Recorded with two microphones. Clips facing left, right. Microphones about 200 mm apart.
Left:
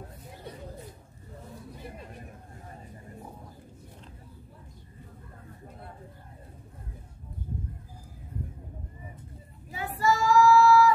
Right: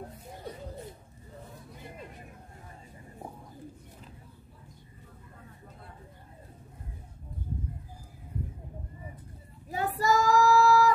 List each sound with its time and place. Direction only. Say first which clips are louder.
9.7 s child singing: even; 40° right (ahead or behind)